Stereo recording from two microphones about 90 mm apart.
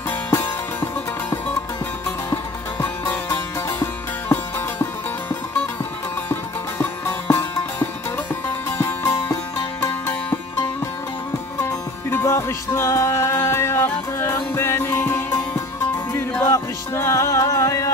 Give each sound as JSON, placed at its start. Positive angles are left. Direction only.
{"t": 0.3, "sound": "music", "side_deg": 25}
{"t": 2.3, "sound": "music", "side_deg": 25}
{"t": 6.8, "sound": "music", "side_deg": 25}
{"t": 11.6, "sound": "music", "side_deg": 30}